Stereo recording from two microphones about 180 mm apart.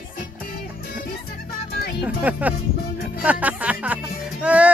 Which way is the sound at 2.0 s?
10° right (ahead or behind).